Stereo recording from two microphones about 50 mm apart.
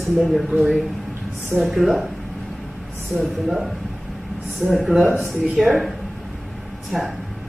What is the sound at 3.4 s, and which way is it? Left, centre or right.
Speech, centre.